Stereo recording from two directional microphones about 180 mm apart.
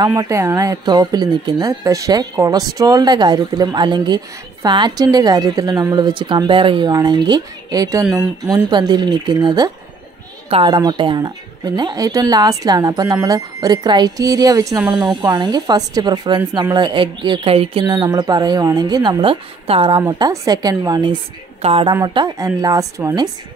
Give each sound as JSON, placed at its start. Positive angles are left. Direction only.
{"t": 0.0, "sound": "speech", "side_deg": -20}
{"t": 8.0, "sound": "speech", "side_deg": -5}
{"t": 8.5, "sound": "speech", "side_deg": -20}